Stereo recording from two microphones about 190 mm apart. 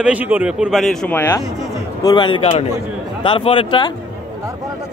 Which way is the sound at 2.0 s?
20° left (ahead or behind).